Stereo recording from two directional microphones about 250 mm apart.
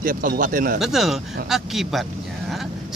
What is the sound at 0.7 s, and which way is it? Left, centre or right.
Speech, centre.